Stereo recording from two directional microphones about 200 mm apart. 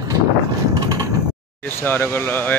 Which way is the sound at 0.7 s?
15° right (ahead or behind).